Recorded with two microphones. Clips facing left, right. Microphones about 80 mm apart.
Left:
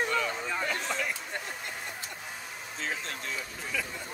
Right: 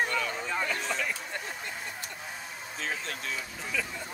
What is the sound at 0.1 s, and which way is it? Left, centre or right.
Vehicle, centre.